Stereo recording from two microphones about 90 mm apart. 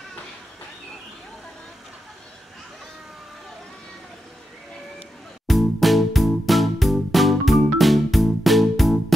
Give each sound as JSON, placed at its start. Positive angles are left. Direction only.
{"t": 5.5, "sound": "music", "side_deg": 0}